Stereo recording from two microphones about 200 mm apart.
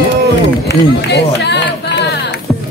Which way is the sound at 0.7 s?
55° left (ahead or behind).